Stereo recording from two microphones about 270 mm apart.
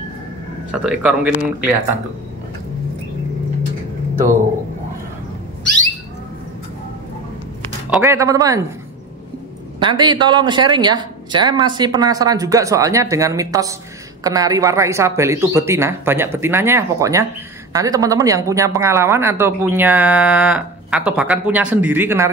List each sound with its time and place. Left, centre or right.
0.7 s speech: centre
7.9 s speech: centre
9.8 s speech: centre